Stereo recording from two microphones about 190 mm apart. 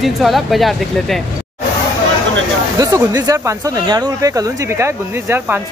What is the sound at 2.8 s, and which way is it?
Speech, 20° right (ahead or behind).